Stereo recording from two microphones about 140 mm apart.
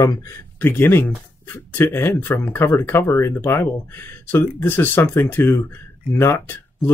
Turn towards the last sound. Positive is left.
turn(degrees=15)  # may be behind; listen again after turning